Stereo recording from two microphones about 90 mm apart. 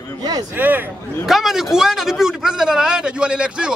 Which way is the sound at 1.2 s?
5° right (ahead or behind).